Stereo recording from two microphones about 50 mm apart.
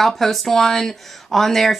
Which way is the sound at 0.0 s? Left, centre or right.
Centre.